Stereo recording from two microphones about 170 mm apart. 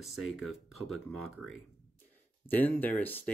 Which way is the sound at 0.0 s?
Centre (ahead or behind).